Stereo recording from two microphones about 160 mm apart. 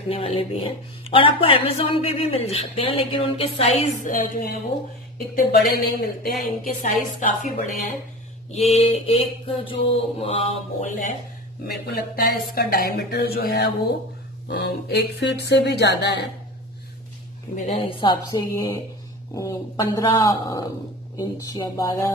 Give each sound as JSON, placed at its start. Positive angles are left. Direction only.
{"t": 0.1, "sound": "a woman's voice", "side_deg": 35}
{"t": 4.0, "sound": "music", "side_deg": 60}
{"t": 5.3, "sound": "a woman's voice", "side_deg": 70}
{"t": 8.6, "sound": "a woman's voice", "side_deg": 40}
{"t": 11.6, "sound": "a woman's voice", "side_deg": 75}
{"t": 17.6, "sound": "a woman's voice", "side_deg": 40}